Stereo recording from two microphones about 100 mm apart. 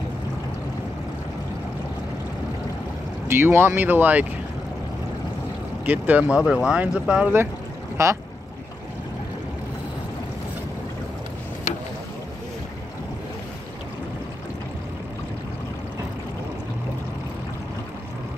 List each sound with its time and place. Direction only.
3.3 s speech: 25° right (ahead or behind)
5.9 s speech: 15° right (ahead or behind)
8.0 s speech: 30° right (ahead or behind)